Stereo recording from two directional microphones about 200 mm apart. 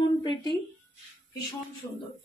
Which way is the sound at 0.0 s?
20° left (ahead or behind).